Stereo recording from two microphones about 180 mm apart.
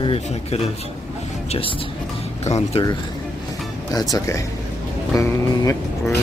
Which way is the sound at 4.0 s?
20° left (ahead or behind).